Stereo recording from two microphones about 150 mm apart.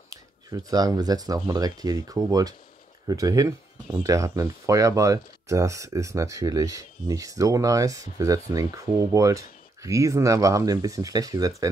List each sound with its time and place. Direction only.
0.1 s speech: 25° right (ahead or behind)